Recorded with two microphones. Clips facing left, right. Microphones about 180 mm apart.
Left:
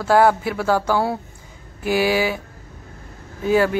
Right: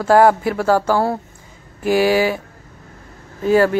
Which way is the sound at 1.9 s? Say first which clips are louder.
Right 4 dB; 45° right (ahead or behind).